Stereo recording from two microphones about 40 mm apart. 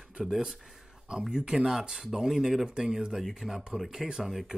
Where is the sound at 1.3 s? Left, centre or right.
Centre.